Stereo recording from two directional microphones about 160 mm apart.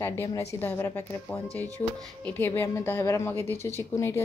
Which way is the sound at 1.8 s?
25° left (ahead or behind).